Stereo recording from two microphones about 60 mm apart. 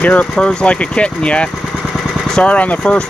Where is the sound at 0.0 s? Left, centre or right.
Centre.